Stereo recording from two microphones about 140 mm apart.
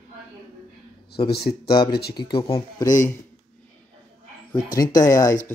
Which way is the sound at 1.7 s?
30° left (ahead or behind).